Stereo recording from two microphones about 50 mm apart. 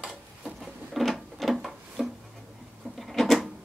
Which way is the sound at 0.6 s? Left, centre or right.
Centre.